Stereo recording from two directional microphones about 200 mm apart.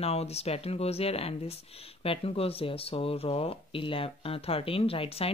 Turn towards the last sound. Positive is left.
turn(degrees=30)  # may be behind; listen again after turning